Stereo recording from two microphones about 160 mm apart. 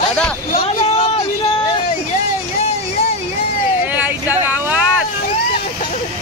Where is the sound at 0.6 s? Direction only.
35° left (ahead or behind).